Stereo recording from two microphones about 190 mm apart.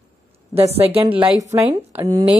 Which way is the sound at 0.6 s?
30° right (ahead or behind).